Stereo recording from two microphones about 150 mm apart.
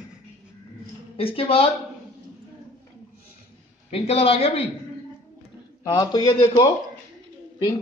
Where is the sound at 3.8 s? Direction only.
40° left (ahead or behind).